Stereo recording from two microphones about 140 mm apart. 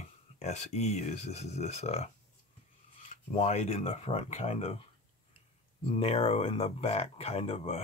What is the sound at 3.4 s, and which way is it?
Speech, 50° left (ahead or behind).